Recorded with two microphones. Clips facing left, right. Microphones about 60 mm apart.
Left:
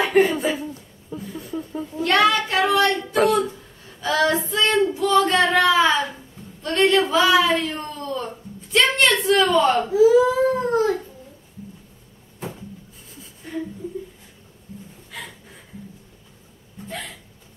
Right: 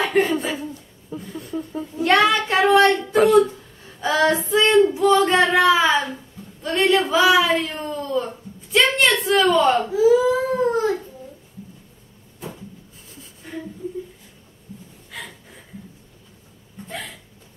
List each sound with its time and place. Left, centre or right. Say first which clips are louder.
0.0 s speech: left 2 dB; centre
2.0 s female singing: right 1 dB; right
4.0 s female singing: right 1 dB; right
5.0 s singing: right 2 dB; right
6.6 s speech: even; centre
13.1 s a sound: left 1 dB; centre